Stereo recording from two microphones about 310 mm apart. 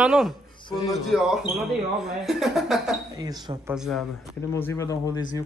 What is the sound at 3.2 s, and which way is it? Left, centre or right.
Speech, centre.